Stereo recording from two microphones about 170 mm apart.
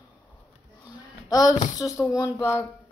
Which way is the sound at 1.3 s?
20° left (ahead or behind).